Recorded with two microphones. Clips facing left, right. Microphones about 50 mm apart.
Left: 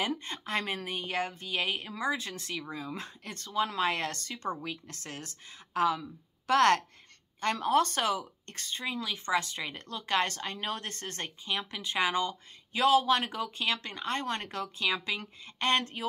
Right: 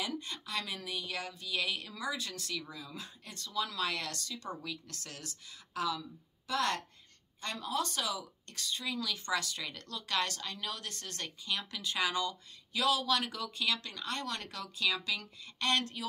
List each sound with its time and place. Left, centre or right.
0.0 s speech: left
4.6 s speech: left
6.4 s a woman's voice: left